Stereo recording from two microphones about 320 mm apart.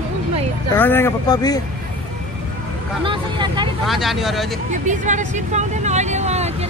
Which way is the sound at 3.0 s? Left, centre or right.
Centre.